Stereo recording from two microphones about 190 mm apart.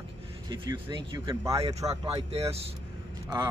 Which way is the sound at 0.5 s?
25° right (ahead or behind).